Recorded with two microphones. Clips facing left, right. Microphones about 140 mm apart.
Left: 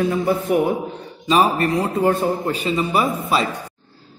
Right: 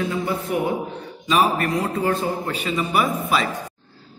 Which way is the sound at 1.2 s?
35° left (ahead or behind).